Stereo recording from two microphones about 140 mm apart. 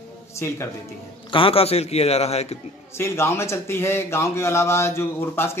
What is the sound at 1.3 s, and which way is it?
A man's voice, 40° left (ahead or behind).